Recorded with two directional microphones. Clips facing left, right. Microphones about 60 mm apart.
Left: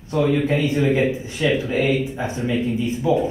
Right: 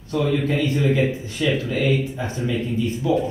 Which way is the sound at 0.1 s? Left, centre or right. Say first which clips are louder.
Left 2 dB; left.